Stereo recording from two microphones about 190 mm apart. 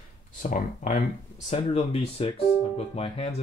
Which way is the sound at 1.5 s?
30° left (ahead or behind).